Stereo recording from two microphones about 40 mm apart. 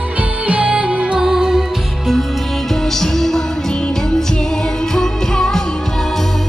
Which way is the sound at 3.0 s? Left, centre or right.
Centre.